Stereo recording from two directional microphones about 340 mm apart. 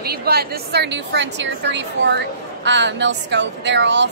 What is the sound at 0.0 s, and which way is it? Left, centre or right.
A woman's voice, right.